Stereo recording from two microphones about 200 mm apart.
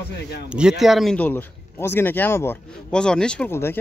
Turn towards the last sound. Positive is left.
turn(degrees=10)  # may be behind; listen again after turning